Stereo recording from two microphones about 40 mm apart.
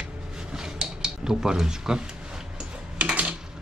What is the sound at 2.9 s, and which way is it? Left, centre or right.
Coin, right.